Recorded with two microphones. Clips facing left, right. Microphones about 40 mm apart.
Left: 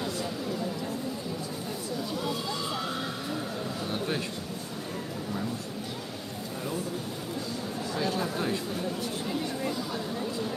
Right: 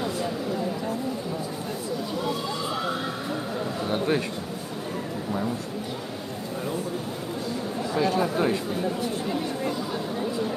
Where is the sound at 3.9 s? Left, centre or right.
Right.